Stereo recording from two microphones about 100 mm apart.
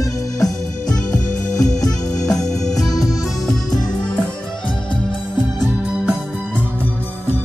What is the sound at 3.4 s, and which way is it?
Music, centre (ahead or behind).